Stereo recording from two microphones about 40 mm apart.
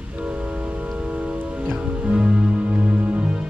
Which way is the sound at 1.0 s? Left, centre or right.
Right.